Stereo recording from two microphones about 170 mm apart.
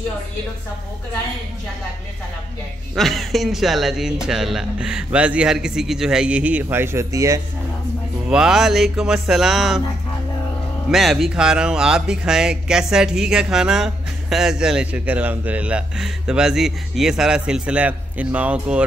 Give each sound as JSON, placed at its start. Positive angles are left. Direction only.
{"t": 3.0, "sound": "speech", "side_deg": 0}
{"t": 8.3, "sound": "speech", "side_deg": -5}
{"t": 10.9, "sound": "speech", "side_deg": 0}